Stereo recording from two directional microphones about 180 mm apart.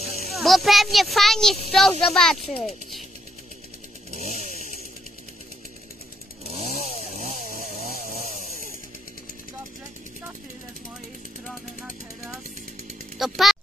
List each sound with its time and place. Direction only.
0.3 s speech: centre (ahead or behind)
4.1 s chainsaw: 40° right (ahead or behind)
6.5 s chainsaw: 35° right (ahead or behind)
11.4 s vehicle: centre (ahead or behind)
13.2 s speech: centre (ahead or behind)